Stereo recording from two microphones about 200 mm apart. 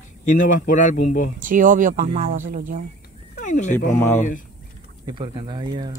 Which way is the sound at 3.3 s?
40° left (ahead or behind).